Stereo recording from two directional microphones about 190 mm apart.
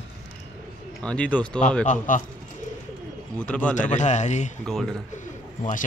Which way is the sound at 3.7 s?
40° left (ahead or behind).